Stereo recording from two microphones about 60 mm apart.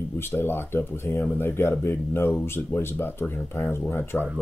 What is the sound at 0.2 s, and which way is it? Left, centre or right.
Speech, left.